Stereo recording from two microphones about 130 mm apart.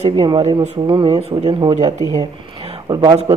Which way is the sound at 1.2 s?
50° right (ahead or behind).